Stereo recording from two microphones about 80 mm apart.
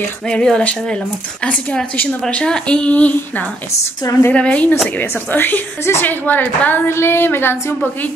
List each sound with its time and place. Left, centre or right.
0.3 s a woman's voice: centre
4.0 s a woman's voice: left
4.3 s a woman's voice: centre